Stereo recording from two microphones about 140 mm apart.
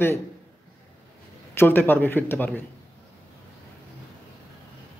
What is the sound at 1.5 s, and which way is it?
A man's voice, 15° left (ahead or behind).